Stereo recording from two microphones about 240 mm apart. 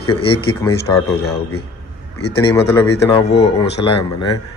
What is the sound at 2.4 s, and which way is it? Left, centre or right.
Speech, centre.